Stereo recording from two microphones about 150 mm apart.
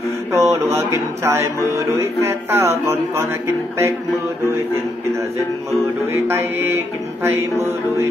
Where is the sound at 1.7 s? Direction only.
20° right (ahead or behind).